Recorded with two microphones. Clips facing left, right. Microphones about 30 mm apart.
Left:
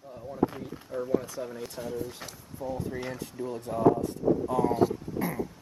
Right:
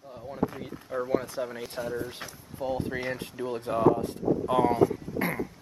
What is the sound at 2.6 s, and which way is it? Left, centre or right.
Speech, right.